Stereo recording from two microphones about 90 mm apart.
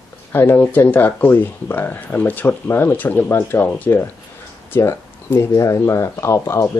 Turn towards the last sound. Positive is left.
turn(degrees=30)  # may be behind; listen again after turning